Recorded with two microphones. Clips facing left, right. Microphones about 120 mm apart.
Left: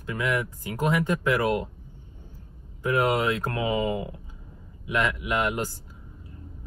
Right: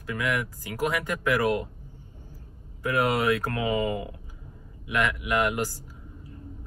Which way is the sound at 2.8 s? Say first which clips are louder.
Left 1 dB; 25° left (ahead or behind).